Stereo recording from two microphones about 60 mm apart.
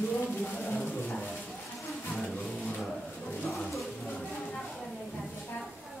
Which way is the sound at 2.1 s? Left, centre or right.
Centre.